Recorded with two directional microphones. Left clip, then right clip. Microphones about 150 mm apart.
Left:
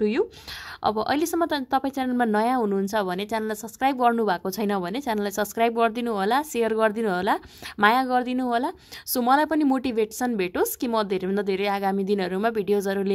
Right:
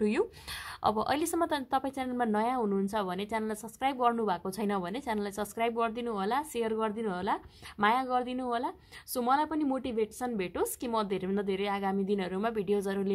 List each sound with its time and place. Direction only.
0.0 s a woman's voice: 15° left (ahead or behind); by 13.1 s 30° left (ahead or behind)